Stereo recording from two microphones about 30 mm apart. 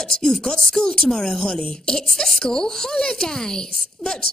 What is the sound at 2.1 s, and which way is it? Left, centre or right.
A woman's voice, centre.